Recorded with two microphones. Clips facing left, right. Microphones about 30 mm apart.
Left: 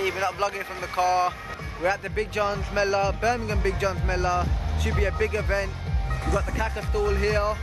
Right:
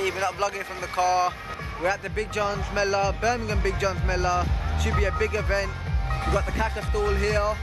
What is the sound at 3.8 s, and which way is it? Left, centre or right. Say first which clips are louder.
Speech: right 2 dB; centre.